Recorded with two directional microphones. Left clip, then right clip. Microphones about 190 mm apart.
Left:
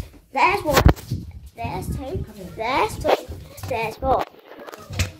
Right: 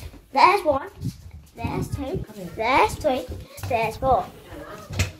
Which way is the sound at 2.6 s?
5° right (ahead or behind).